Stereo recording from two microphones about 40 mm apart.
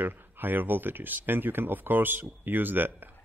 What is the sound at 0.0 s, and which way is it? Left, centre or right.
Speech, right.